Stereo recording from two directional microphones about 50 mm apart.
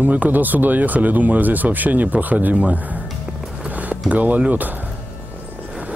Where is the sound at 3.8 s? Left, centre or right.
Right.